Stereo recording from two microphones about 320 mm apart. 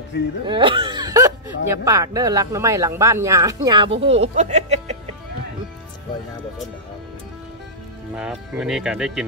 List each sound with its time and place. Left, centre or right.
0.5 s speech: centre
8.2 s speech: centre